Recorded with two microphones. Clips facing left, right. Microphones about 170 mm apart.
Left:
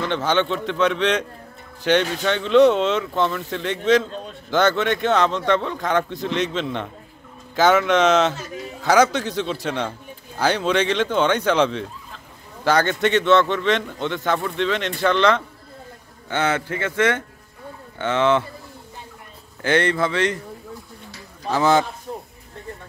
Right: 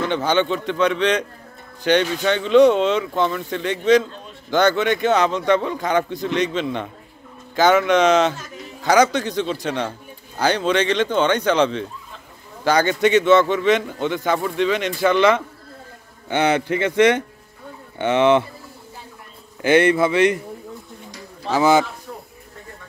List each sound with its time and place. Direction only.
0.0 s a man's voice: centre (ahead or behind)
19.6 s a man's voice: 10° right (ahead or behind)
21.1 s a sound: 5° right (ahead or behind)